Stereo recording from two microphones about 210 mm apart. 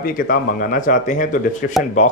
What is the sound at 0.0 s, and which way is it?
Speech, 45° left (ahead or behind).